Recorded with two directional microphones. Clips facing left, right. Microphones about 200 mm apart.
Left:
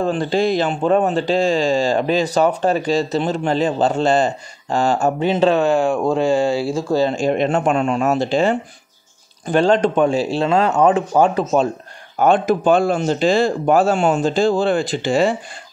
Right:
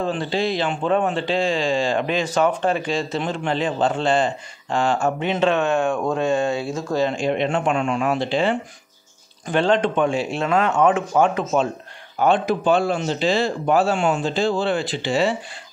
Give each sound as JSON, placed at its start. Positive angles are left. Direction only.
{"t": 0.0, "sound": "speech", "side_deg": 45}
{"t": 12.2, "sound": "speech", "side_deg": 50}